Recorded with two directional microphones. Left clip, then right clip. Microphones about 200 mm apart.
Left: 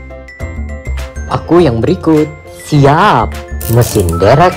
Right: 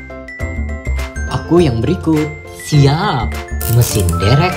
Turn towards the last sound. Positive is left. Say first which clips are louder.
# left 8 dB
turn(degrees=0)  # may be behind; listen again after turning